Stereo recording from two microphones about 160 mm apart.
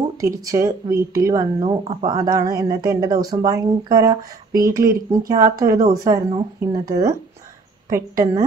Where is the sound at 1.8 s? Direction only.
40° right (ahead or behind).